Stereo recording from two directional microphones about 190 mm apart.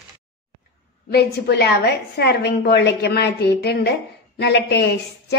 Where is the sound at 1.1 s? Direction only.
60° left (ahead or behind).